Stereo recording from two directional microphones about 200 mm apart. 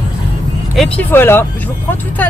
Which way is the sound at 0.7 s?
5° left (ahead or behind).